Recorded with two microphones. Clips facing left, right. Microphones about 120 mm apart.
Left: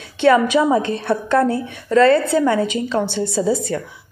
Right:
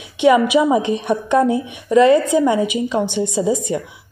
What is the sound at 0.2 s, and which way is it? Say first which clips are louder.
A woman's voice: right 1 dB; 15° right (ahead or behind).